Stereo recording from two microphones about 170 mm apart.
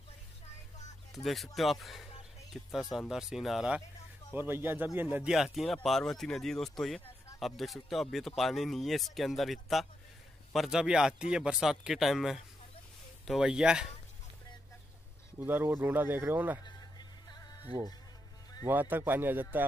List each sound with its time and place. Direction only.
1.2 s speech: centre (ahead or behind)
15.3 s speech: 10° right (ahead or behind)
17.3 s music: 25° left (ahead or behind)
18.7 s speech: 10° right (ahead or behind)